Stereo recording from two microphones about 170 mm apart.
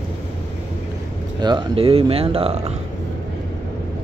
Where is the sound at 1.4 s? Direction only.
30° right (ahead or behind).